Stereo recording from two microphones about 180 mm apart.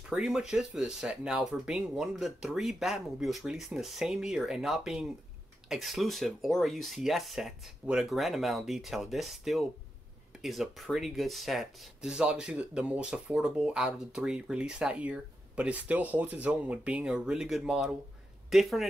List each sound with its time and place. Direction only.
0.1 s speech: 5° right (ahead or behind)